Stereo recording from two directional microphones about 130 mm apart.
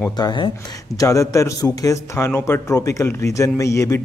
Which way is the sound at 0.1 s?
35° left (ahead or behind).